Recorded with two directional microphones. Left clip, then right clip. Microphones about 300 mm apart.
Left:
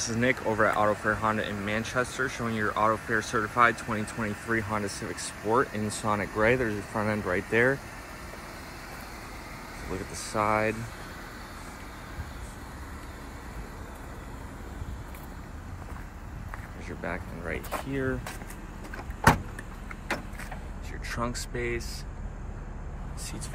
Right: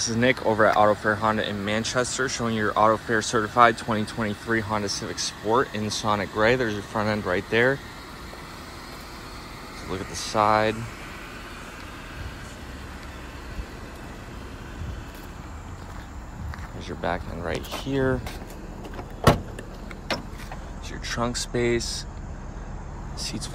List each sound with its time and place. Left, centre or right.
0.0 s speech: centre
10.1 s speech: centre
17.0 s speech: centre
21.0 s speech: centre
23.1 s speech: centre